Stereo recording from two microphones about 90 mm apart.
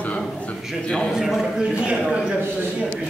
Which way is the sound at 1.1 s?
5° right (ahead or behind).